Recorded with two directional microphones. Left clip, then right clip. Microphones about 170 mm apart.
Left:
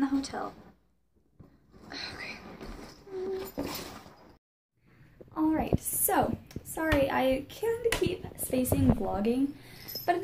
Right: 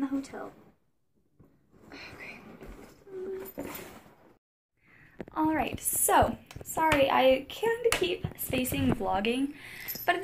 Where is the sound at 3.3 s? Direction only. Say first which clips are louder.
Left 3 dB; 35° left (ahead or behind).